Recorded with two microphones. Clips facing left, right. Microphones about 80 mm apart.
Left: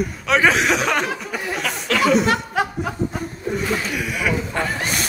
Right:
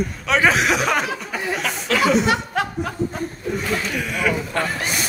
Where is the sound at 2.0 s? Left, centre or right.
Centre.